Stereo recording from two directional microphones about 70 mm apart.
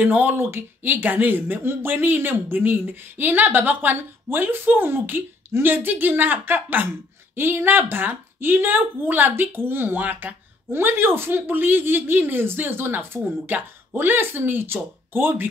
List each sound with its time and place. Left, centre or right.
0.0 s speech: right